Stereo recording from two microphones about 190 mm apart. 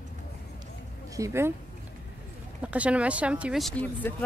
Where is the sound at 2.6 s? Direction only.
5° right (ahead or behind); by 4.2 s 10° left (ahead or behind).